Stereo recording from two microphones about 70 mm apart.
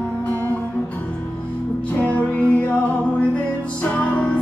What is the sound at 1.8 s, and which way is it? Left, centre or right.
Music, centre.